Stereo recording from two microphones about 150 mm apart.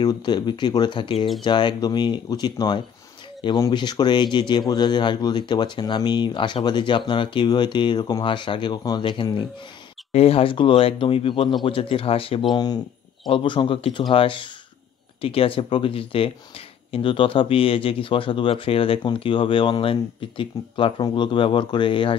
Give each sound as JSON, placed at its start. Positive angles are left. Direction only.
{"t": 0.0, "sound": "speech", "side_deg": 30}
{"t": 10.1, "sound": "speech", "side_deg": 40}